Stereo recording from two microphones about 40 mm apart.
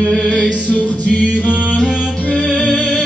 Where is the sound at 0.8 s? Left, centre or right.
Left.